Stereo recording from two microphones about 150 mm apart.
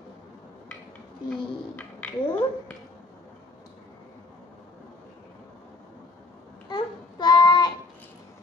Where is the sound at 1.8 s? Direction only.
10° left (ahead or behind).